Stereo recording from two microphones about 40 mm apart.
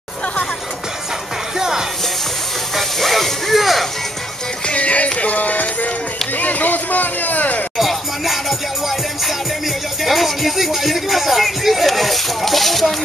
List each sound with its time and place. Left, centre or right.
2.7 s music: centre
4.6 s music: left
6.4 s a sound: left
7.7 s music: centre
10.0 s speech: centre